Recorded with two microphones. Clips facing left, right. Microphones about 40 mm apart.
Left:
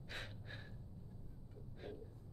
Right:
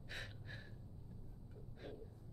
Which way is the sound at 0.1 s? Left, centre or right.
Centre.